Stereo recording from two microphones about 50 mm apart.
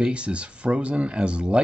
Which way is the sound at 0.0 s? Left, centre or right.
Right.